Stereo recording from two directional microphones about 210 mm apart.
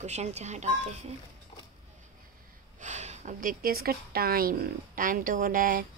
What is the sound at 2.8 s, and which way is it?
A woman's voice, 35° right (ahead or behind).